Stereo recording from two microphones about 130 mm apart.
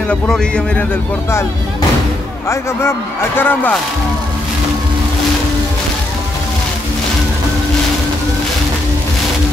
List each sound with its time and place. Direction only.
0.1 s a man's voice: 10° left (ahead or behind)
2.4 s a man's voice: 20° left (ahead or behind)